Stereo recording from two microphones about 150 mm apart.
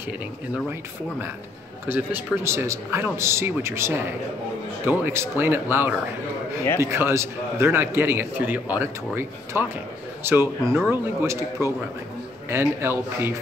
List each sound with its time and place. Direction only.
1.9 s a man's voice: 15° right (ahead or behind)